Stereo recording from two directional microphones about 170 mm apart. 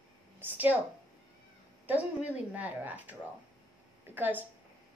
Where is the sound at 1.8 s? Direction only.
10° right (ahead or behind).